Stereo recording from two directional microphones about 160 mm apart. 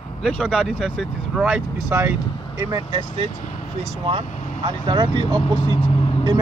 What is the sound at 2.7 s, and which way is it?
Speech, 35° right (ahead or behind).